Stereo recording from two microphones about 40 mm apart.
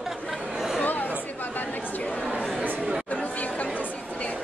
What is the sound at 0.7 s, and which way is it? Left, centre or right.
Chatter, left.